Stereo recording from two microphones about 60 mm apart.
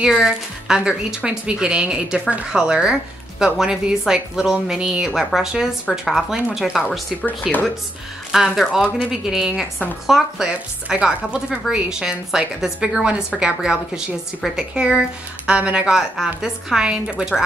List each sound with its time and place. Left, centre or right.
0.1 s a woman's voice: centre
5.9 s a woman's voice: centre